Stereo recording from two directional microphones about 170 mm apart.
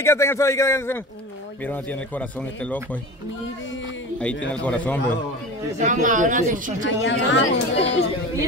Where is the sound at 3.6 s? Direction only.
90° left.